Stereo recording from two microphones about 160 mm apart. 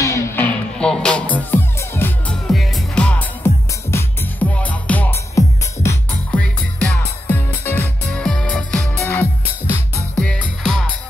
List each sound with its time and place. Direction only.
0.0 s music: 20° left (ahead or behind)
2.4 s music: centre (ahead or behind)
8.9 s music: 15° left (ahead or behind)